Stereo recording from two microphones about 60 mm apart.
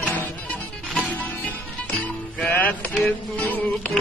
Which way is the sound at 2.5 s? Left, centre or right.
Left.